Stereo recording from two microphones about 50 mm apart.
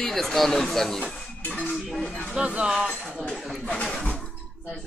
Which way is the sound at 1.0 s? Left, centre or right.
Left.